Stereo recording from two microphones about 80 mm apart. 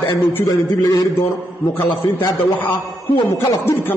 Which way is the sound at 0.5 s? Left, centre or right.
Left.